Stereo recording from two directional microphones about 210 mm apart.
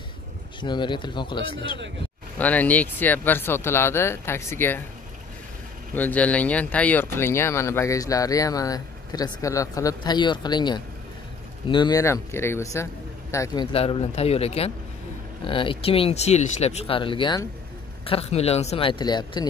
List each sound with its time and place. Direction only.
0.6 s speech: 20° left (ahead or behind)
2.3 s speech: 5° left (ahead or behind)
5.9 s speech: 5° left (ahead or behind)
13.7 s speech: 25° left (ahead or behind)